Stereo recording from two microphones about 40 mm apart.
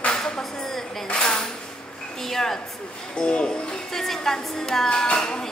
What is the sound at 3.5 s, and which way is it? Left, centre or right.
A woman's voice, centre.